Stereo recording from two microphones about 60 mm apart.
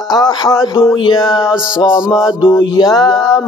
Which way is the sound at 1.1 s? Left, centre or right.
Left.